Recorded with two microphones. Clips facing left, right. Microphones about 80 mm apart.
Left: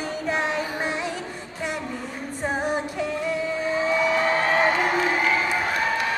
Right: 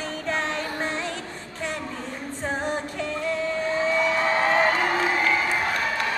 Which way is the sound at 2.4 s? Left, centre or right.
Centre.